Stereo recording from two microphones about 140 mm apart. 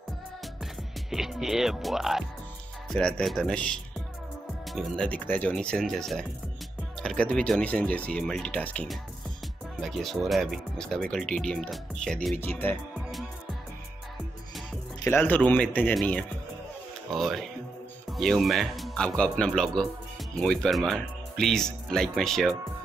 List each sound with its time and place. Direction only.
1.1 s speech: centre (ahead or behind)
12.4 s speech: 15° left (ahead or behind)
15.0 s speech: 10° left (ahead or behind)